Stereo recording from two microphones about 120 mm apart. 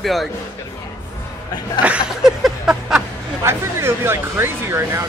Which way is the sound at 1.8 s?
5° right (ahead or behind).